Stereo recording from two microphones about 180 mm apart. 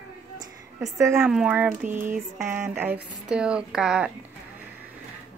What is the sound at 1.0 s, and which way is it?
Speech, 15° right (ahead or behind).